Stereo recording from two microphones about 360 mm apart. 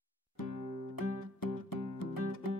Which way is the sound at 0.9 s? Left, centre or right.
Left.